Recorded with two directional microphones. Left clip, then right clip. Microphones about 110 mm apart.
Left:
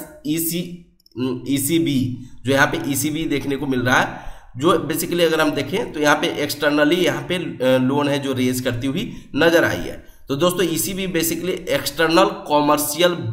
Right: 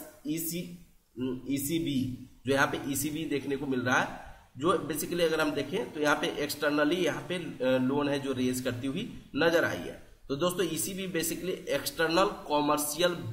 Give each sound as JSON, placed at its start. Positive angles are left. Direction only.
{"t": 0.3, "sound": "speech", "side_deg": 0}